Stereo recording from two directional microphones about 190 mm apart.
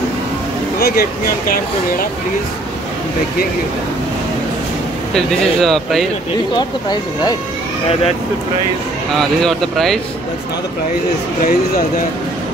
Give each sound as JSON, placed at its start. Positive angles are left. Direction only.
{"t": 0.7, "sound": "speech", "side_deg": 55}
{"t": 5.1, "sound": "speech", "side_deg": 0}
{"t": 9.1, "sound": "speech", "side_deg": 0}